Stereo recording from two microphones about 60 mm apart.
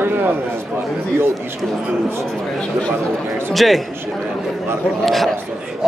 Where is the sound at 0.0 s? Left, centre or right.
Right.